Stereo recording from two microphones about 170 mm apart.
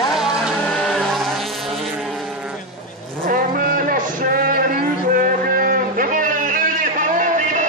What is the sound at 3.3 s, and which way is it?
Music, 55° right (ahead or behind).